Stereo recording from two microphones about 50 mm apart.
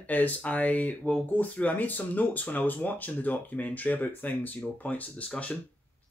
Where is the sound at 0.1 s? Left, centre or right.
Left.